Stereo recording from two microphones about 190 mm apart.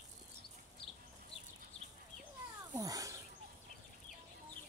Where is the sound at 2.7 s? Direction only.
20° right (ahead or behind).